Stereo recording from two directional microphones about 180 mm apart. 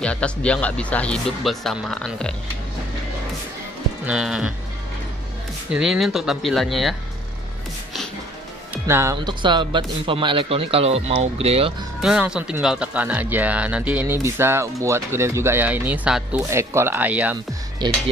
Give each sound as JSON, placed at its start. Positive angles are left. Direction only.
{"t": 0.0, "sound": "speech", "side_deg": 5}
{"t": 4.0, "sound": "speech", "side_deg": -5}
{"t": 5.7, "sound": "speech", "side_deg": -5}
{"t": 8.8, "sound": "speech", "side_deg": -15}
{"t": 12.0, "sound": "speech", "side_deg": -5}
{"t": 17.7, "sound": "speech", "side_deg": -25}